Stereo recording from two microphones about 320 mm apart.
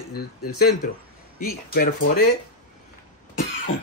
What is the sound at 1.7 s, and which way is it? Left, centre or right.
Speech, left.